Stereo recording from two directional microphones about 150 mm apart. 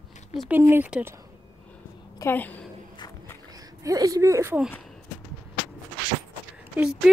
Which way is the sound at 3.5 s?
25° right (ahead or behind).